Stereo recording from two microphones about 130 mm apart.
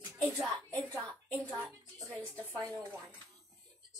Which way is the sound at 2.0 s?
20° right (ahead or behind).